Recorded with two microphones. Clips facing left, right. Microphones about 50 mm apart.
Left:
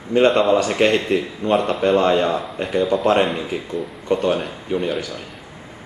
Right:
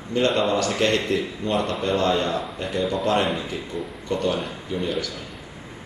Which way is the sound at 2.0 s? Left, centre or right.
Centre.